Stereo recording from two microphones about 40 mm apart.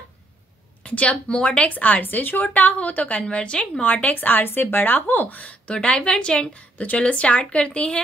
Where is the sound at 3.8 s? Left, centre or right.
Left.